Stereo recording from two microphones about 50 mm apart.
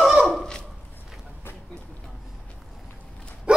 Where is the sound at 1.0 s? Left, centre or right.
Centre.